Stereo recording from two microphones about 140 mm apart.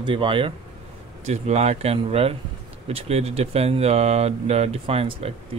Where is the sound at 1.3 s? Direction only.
50° right (ahead or behind).